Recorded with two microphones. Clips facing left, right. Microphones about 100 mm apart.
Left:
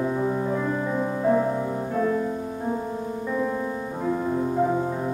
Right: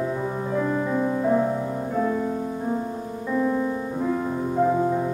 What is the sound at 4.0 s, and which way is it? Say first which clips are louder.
Music: left 2 dB; 15° left (ahead or behind).